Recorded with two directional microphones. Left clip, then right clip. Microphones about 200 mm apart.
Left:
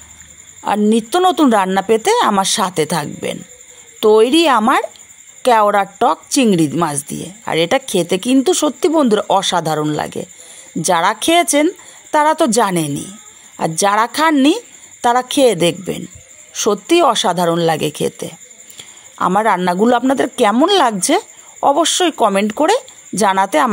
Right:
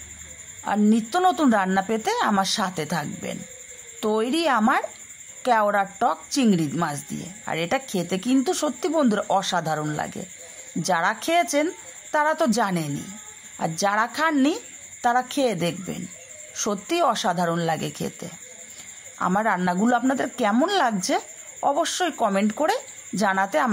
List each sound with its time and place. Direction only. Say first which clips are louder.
0.6 s a woman's voice: left 8 dB; 40° left (ahead or behind)